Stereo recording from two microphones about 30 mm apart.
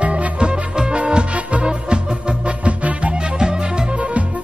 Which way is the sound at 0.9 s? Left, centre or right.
Right.